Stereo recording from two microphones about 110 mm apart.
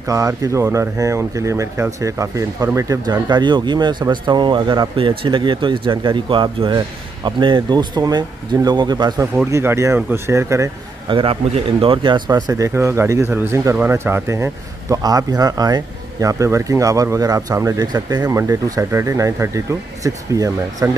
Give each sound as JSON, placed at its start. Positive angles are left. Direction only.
{"t": 0.0, "sound": "speech", "side_deg": -30}
{"t": 9.5, "sound": "speech", "side_deg": -25}
{"t": 11.1, "sound": "speech", "side_deg": -50}
{"t": 12.3, "sound": "speech", "side_deg": -35}